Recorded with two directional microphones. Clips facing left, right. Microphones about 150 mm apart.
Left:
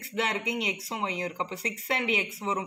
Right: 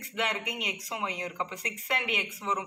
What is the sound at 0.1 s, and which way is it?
Speech, 35° left (ahead or behind).